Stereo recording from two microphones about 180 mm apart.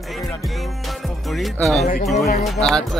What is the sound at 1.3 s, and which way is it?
Speech, centre (ahead or behind).